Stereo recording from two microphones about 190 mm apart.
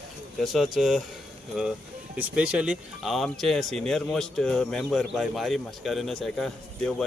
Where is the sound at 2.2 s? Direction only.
5° right (ahead or behind).